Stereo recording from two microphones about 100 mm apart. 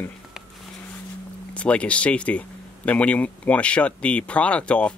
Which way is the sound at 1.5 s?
10° left (ahead or behind).